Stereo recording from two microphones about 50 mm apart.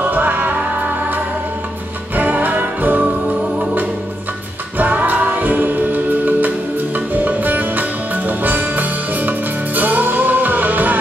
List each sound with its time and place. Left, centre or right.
0.1 s music: right
2.1 s music: right
4.7 s music: right